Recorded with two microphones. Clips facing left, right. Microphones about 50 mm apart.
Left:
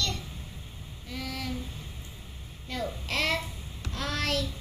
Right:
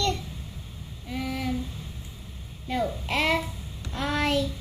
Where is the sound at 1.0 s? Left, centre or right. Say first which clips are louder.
Right 6 dB; centre.